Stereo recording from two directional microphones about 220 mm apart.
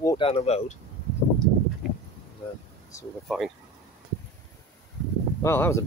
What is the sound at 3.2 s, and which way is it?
Speech, centre (ahead or behind).